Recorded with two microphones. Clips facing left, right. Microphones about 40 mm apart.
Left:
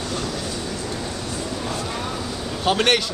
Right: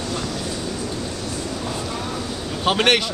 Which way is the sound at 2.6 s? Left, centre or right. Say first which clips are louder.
Right 1 dB; right.